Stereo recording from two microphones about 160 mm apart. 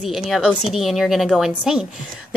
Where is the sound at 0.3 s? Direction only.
Centre (ahead or behind).